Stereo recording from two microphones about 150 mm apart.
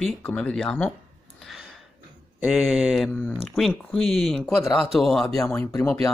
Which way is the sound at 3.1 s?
10° left (ahead or behind).